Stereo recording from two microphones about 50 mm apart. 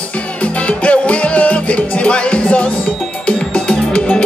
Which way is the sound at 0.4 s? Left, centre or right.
Left.